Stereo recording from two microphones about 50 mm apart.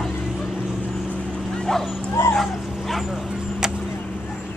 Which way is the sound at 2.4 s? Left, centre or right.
Centre.